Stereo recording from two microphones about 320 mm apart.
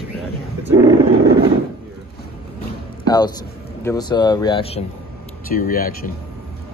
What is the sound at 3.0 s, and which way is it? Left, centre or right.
Speech, centre.